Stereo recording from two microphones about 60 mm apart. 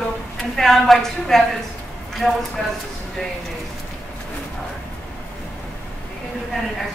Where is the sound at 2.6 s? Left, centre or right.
Centre.